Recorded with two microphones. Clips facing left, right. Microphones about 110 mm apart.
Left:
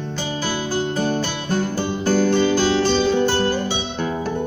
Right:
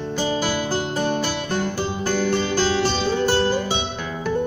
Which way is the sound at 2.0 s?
35° left (ahead or behind).